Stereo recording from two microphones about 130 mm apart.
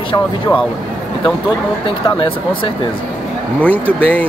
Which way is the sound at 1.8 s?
40° left (ahead or behind).